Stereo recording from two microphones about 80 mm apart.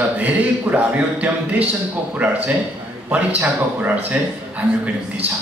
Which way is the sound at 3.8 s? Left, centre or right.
Centre.